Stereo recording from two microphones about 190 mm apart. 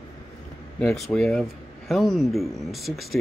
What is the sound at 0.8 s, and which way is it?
Speech, 5° left (ahead or behind).